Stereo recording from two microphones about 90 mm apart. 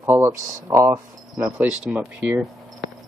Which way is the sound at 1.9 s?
15° right (ahead or behind).